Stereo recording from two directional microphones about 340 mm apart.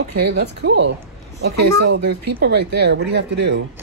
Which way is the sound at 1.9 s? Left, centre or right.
Right.